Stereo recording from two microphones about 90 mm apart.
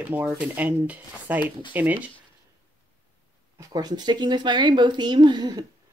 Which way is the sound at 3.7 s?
50° right (ahead or behind).